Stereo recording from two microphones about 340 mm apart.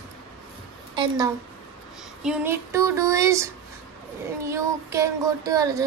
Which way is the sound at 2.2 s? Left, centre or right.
Centre.